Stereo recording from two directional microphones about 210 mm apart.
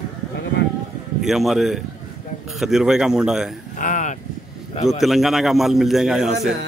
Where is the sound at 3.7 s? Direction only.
40° left (ahead or behind).